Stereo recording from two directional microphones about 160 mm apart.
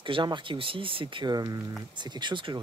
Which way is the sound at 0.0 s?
30° right (ahead or behind).